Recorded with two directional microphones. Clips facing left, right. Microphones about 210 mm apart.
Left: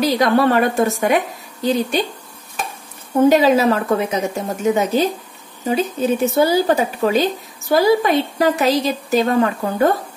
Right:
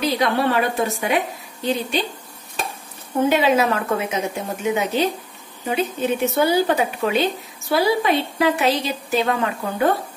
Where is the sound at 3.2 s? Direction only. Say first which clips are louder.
Left 5 dB; 40° left (ahead or behind).